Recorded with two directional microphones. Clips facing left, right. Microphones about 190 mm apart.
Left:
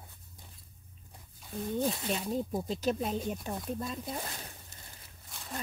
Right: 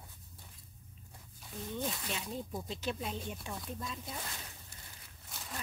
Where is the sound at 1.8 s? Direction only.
35° left (ahead or behind).